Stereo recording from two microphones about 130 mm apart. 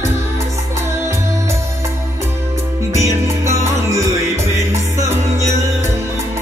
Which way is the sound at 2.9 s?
20° right (ahead or behind).